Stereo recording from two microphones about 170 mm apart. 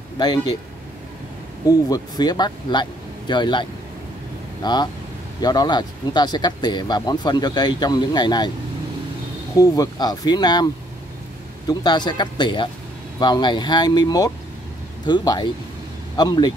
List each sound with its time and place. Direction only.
0.2 s speech: 25° left (ahead or behind)
1.7 s speech: 25° left (ahead or behind)
4.6 s speech: 25° left (ahead or behind)
9.6 s speech: 20° left (ahead or behind)